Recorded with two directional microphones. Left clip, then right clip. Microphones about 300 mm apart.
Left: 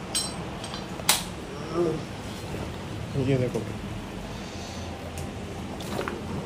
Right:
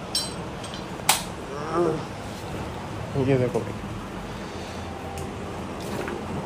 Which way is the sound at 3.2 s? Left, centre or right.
Centre.